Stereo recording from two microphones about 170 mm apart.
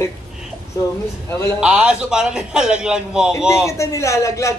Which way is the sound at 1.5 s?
5° right (ahead or behind).